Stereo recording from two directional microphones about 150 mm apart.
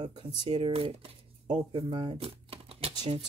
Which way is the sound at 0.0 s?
30° right (ahead or behind).